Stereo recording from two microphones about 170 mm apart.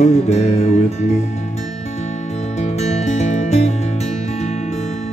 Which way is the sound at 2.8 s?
40° left (ahead or behind).